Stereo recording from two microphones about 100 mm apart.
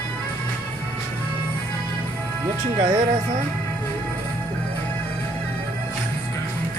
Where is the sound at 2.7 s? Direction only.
45° right (ahead or behind).